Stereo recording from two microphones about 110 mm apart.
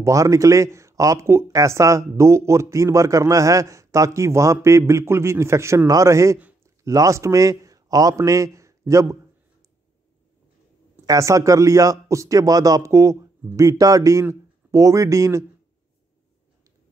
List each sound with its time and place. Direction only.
0.0 s a man's voice: 30° right (ahead or behind)
11.1 s speech: 30° right (ahead or behind)